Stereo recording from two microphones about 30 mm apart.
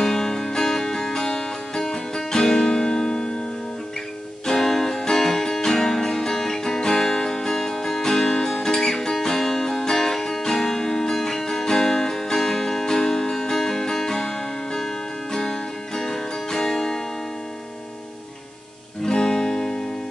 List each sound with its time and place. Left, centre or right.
0.0 s music: centre
4.5 s music: centre
19.0 s music: left